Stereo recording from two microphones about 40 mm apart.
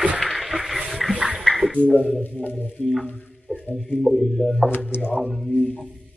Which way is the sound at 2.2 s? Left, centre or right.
Left.